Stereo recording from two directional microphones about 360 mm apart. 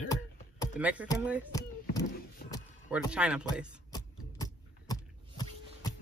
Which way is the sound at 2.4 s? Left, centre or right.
Left.